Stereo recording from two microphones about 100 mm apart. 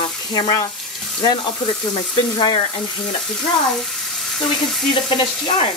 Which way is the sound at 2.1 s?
45° left (ahead or behind).